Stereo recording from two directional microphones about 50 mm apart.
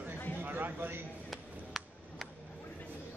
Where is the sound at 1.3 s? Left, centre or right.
Centre.